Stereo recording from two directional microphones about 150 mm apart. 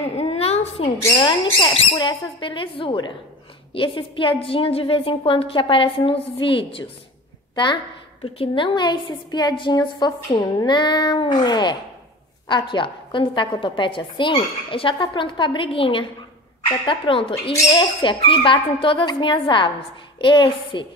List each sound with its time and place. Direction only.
0.2 s a woman's voice: 40° left (ahead or behind)